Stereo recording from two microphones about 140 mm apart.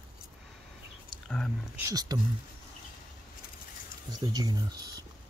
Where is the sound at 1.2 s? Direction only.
5° left (ahead or behind).